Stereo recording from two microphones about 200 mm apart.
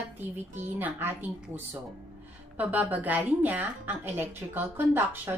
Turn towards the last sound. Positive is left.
turn(degrees=-10)  # may be behind; listen again after turning